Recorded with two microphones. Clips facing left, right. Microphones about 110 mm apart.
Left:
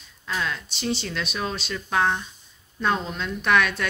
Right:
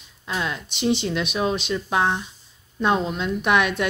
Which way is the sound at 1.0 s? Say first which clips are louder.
Right 6 dB; 15° right (ahead or behind).